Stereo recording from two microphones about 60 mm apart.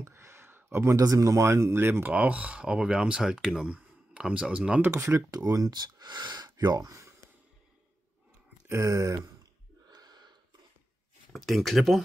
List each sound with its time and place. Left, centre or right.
0.0 s a sound: right
0.9 s speech: right
1.4 s speech: right
2.0 s speech: right
3.6 s a sound: centre
4.2 s speech: centre
4.8 s speech: right
5.3 s speech: right
8.6 s speech: right
11.3 s speech: centre